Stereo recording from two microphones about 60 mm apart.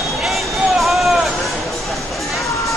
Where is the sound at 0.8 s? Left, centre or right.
Centre.